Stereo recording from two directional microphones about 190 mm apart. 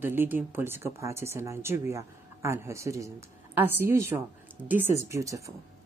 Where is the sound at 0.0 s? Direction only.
10° right (ahead or behind).